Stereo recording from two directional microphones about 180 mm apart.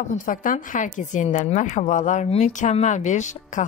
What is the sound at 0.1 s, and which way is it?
A woman's voice, 50° left (ahead or behind).